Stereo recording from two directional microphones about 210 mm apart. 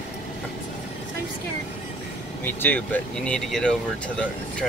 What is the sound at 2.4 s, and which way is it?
Speech, 10° left (ahead or behind).